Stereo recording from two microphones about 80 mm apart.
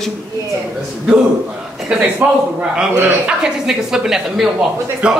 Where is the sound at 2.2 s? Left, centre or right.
Centre.